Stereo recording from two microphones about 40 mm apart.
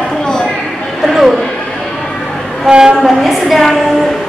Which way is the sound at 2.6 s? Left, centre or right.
Centre.